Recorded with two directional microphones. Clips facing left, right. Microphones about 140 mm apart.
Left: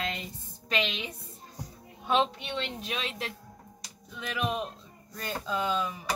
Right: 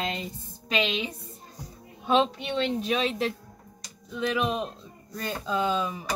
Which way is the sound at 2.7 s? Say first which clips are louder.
Right 9 dB; 35° right (ahead or behind).